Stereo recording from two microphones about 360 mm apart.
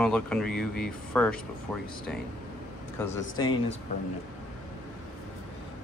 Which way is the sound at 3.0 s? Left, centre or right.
Centre.